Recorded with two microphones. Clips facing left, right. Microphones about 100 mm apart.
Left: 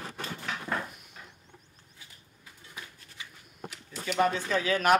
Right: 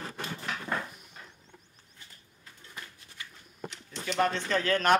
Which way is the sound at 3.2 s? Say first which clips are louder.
Even; 15° left (ahead or behind).